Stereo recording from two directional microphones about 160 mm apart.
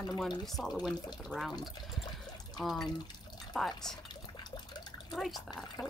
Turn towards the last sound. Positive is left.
turn(degrees=0)  # may be behind; listen again after turning